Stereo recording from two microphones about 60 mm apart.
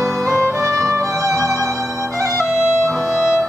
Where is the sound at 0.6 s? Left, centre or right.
Right.